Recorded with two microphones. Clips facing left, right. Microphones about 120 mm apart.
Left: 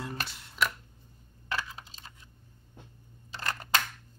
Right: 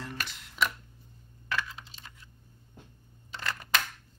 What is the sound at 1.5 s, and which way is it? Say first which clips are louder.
Computer keyboard: right 1 dB; 35° left (ahead or behind).